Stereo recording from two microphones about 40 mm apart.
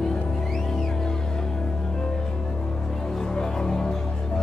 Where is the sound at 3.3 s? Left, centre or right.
Centre.